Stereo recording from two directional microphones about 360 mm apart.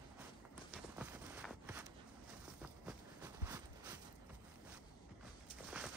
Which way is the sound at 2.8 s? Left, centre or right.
Centre.